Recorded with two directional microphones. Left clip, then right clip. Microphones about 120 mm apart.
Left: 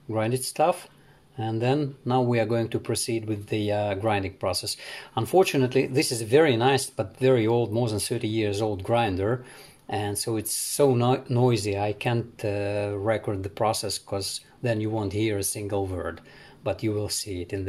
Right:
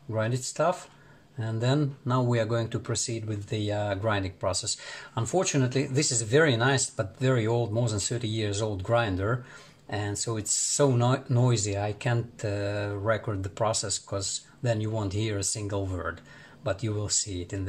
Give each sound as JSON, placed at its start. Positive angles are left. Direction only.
{"t": 0.1, "sound": "speech", "side_deg": 50}